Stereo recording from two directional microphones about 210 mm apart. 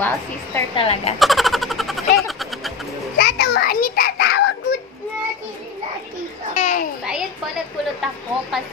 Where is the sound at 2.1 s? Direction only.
Centre (ahead or behind).